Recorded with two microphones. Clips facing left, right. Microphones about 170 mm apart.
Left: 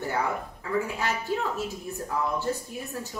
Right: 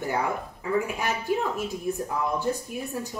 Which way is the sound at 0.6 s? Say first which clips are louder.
Right 3 dB; 15° right (ahead or behind).